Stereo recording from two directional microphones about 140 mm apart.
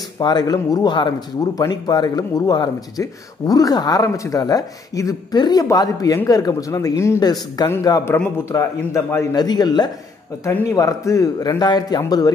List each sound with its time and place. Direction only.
0.2 s speech: 30° left (ahead or behind)